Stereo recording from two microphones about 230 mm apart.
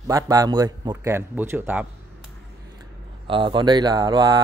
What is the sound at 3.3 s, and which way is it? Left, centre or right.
Speech, right.